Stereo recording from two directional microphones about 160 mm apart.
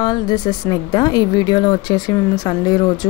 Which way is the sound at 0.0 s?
25° left (ahead or behind).